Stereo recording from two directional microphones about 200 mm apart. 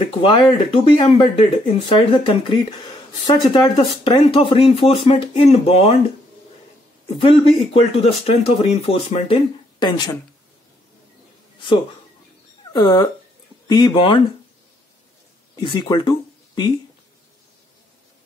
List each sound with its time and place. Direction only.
0.2 s speech: 25° left (ahead or behind)
7.2 s speech: 30° left (ahead or behind)
12.7 s speech: 20° left (ahead or behind)
15.6 s speech: 20° left (ahead or behind)